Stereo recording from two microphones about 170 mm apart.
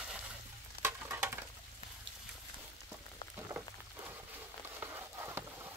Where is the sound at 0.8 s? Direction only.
15° right (ahead or behind).